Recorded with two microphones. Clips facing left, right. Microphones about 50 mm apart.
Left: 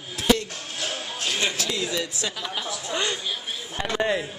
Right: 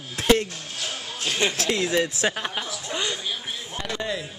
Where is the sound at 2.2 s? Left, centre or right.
Right.